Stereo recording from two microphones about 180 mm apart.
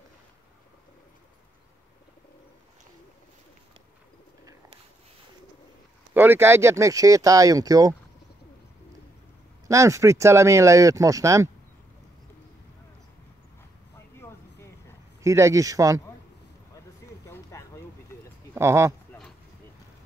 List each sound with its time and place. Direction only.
6.1 s speech: 10° right (ahead or behind)
9.7 s speech: 15° right (ahead or behind)
13.9 s a sound: 15° left (ahead or behind)
15.2 s speech: 15° right (ahead or behind)
17.3 s a sound: 15° left (ahead or behind)
18.5 s speech: 15° right (ahead or behind)